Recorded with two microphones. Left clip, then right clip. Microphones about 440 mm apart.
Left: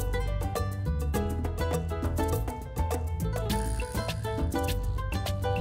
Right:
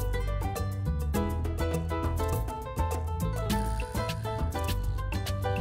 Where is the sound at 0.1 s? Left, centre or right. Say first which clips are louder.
Left 2 dB; left.